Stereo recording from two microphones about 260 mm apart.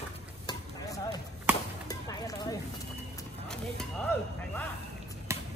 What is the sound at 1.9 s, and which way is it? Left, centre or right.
Music, centre.